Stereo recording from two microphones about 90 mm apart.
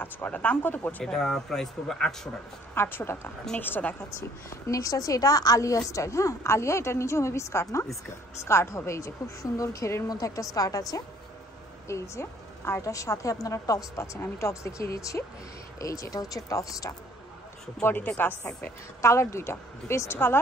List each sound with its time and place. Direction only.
0.0 s speech: 20° left (ahead or behind)
1.0 s speech: 5° left (ahead or behind)
2.7 s speech: 25° left (ahead or behind)
4.5 s a woman's voice: 40° left (ahead or behind)
17.8 s a woman's voice: 25° left (ahead or behind)